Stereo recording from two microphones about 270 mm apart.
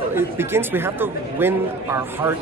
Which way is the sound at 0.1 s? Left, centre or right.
Centre.